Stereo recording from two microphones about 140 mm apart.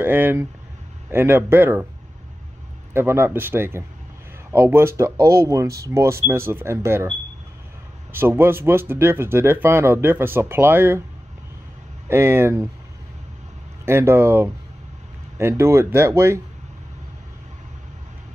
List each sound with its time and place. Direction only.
0.0 s speech: 15° right (ahead or behind)
2.9 s speech: 15° right (ahead or behind)
12.1 s speech: 15° right (ahead or behind)
13.8 s speech: 15° right (ahead or behind)